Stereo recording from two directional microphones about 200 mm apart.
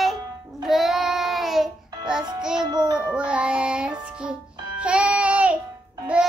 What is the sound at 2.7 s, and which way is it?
Music, 20° right (ahead or behind).